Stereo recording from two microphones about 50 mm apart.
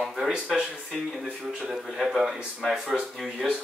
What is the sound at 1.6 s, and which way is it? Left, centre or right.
Speech, centre.